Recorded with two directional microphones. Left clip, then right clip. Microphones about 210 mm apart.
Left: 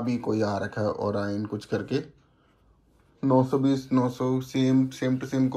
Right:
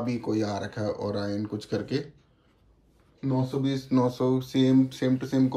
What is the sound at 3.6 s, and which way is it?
Speech, centre (ahead or behind).